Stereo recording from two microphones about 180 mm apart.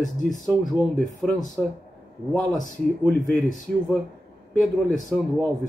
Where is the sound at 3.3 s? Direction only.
45° left (ahead or behind).